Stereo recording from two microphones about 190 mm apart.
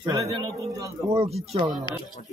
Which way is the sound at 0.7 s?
20° right (ahead or behind).